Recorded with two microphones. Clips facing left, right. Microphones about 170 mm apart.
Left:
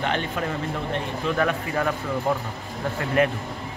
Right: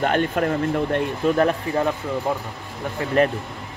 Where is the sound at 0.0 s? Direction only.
50° right (ahead or behind).